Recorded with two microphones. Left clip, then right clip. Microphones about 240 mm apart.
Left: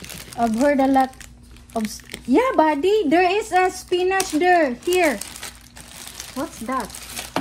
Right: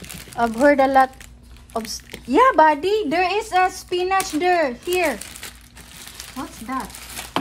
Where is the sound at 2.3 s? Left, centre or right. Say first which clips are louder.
Right 4 dB; right.